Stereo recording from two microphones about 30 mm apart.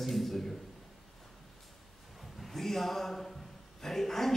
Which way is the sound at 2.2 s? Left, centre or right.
Centre.